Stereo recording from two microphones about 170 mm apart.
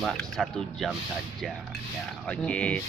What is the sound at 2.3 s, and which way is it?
Speech, 5° left (ahead or behind).